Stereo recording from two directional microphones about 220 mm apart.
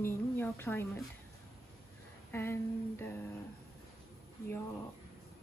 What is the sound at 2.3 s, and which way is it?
Speech, 10° left (ahead or behind).